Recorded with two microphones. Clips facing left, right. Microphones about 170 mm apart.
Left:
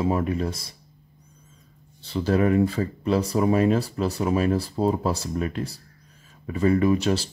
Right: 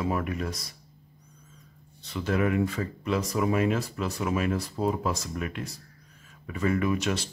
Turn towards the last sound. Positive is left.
turn(degrees=30)  # may be behind; listen again after turning